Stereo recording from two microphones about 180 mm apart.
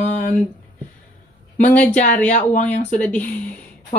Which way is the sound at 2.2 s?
40° left (ahead or behind).